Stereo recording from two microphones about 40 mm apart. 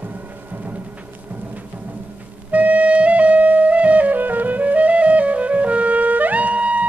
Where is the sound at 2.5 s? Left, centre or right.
Right.